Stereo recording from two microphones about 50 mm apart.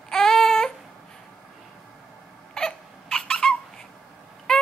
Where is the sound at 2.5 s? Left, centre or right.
Centre.